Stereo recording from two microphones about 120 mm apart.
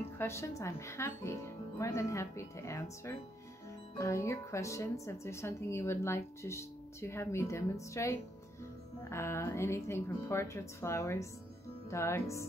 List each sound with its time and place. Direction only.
0.2 s speech: 20° left (ahead or behind)